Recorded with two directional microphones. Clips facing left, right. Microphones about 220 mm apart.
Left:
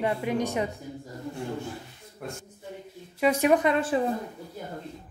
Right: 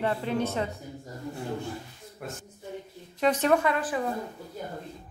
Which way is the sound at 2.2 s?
Centre (ahead or behind).